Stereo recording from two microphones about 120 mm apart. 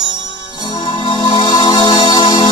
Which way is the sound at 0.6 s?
40° left (ahead or behind).